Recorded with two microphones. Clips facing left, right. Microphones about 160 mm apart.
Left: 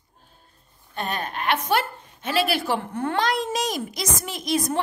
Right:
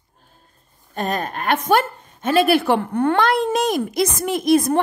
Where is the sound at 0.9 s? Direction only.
40° right (ahead or behind).